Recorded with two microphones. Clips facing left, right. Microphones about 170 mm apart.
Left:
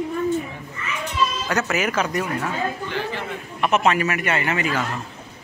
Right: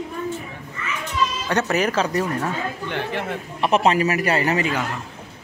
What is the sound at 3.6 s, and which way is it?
Speech, 30° right (ahead or behind).